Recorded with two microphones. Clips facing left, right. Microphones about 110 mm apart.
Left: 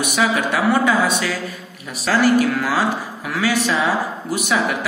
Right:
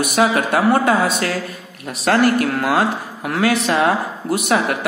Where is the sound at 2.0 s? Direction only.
60° right (ahead or behind).